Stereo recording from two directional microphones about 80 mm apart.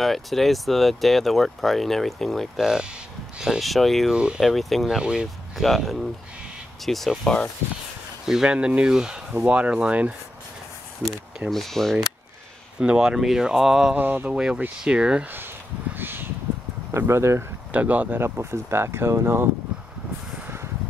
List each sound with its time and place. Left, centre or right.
0.0 s speech: centre
4.1 s speech: centre
4.4 s speech: centre
8.3 s speech: centre
11.5 s speech: centre
12.7 s speech: centre
13.9 s speech: right
15.3 s a sound: right
16.9 s speech: right
17.6 s speech: centre
18.2 s speech: right